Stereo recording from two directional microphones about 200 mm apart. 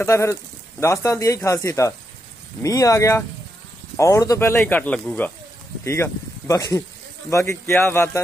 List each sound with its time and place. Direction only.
0.0 s speech: 15° left (ahead or behind)